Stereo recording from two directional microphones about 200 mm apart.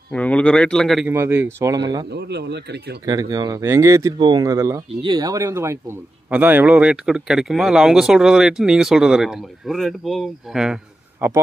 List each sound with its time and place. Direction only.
0.1 s a man's voice: 5° left (ahead or behind)
1.1 s speech: 10° right (ahead or behind)
2.0 s speech: 55° right (ahead or behind)
3.1 s speech: 15° right (ahead or behind)